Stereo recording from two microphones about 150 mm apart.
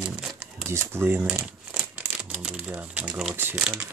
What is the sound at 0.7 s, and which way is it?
Speech, 15° right (ahead or behind).